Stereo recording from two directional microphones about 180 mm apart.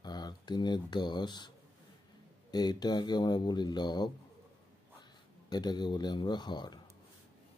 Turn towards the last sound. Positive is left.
turn(degrees=25)  # may be behind; listen again after turning